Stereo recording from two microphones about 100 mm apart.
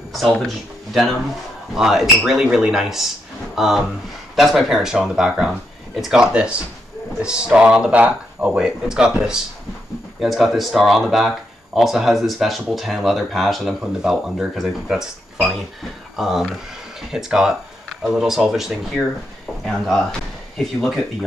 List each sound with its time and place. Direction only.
0.1 s speech: centre (ahead or behind)